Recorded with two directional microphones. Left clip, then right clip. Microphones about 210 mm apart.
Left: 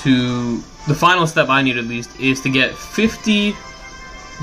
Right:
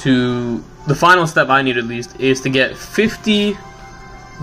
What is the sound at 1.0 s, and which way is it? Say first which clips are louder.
Speech: right 3 dB; 5° left (ahead or behind).